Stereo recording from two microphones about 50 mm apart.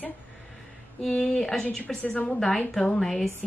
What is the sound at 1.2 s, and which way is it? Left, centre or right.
Speech, centre.